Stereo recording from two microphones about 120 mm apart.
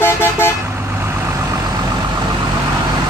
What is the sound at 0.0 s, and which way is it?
Vehicle, 20° left (ahead or behind).